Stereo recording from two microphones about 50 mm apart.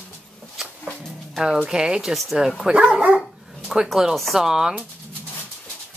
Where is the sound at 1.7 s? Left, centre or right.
Centre.